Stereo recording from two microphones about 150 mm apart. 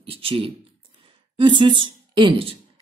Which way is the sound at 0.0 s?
40° right (ahead or behind).